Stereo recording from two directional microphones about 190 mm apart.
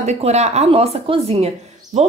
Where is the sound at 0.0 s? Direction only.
35° right (ahead or behind).